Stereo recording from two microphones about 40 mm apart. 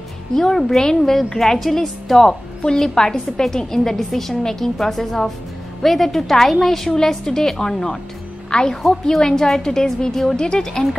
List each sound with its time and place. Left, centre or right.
0.3 s a woman's voice: centre